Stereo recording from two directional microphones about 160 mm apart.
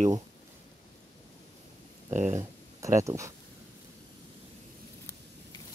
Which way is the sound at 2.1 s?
50° right (ahead or behind).